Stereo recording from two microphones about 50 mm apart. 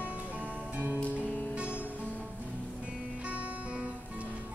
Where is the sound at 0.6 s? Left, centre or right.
Right.